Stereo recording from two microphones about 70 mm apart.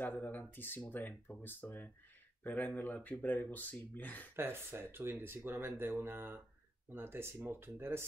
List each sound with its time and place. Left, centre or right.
0.0 s speech: left
4.4 s speech: right